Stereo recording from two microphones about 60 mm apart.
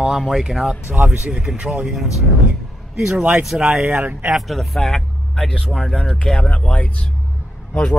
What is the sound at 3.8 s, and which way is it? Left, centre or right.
Speech, right.